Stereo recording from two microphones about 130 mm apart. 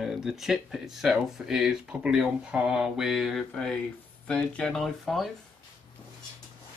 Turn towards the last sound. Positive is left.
turn(degrees=0)  # may be behind; listen again after turning